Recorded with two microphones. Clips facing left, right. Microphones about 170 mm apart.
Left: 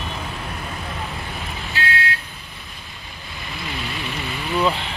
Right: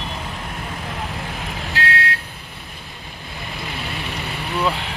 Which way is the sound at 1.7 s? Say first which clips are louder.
Right 1 dB; 70° right (ahead or behind).